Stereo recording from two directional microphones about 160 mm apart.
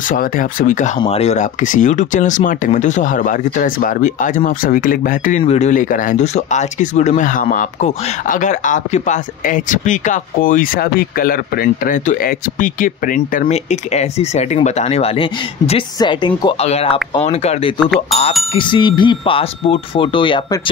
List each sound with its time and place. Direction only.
0.1 s speech: 60° left (ahead or behind)
1.0 s speech: 40° left (ahead or behind); by 5.4 s 60° left (ahead or behind)
5.4 s speech: 45° left (ahead or behind)
18.1 s speech: centre (ahead or behind)
18.5 s speech: 30° left (ahead or behind)